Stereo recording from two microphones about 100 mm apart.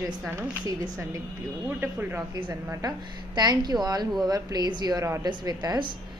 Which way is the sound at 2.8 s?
45° right (ahead or behind).